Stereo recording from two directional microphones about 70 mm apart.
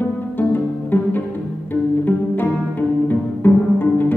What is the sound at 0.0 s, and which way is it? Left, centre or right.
Music, left.